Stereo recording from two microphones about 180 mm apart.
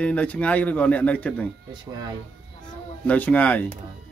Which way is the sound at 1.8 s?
20° right (ahead or behind).